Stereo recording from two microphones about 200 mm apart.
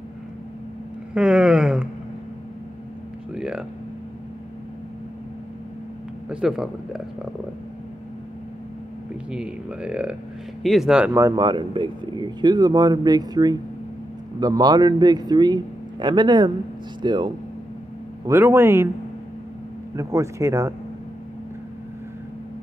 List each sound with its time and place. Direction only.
1.1 s speech: 5° right (ahead or behind)
3.3 s a sound: 5° right (ahead or behind)
6.3 s speech: 5° right (ahead or behind)
9.3 s speech: 5° right (ahead or behind); by 17.3 s 25° right (ahead or behind)
18.2 s speech: 10° right (ahead or behind)
20.0 s speech: 15° right (ahead or behind)